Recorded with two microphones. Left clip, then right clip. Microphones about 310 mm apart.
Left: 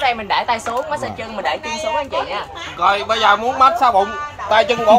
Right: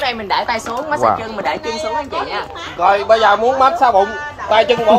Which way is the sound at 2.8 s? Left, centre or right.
Left.